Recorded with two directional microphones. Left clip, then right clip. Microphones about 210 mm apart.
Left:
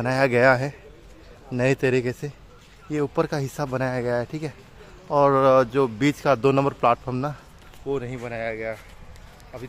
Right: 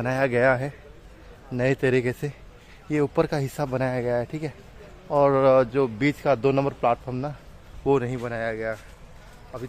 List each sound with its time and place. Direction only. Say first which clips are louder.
0.0 s a man's voice: left 3 dB; 10° left (ahead or behind)
7.8 s speech: right 6 dB; 50° right (ahead or behind)
8.2 s speech: right 1 dB; 20° right (ahead or behind)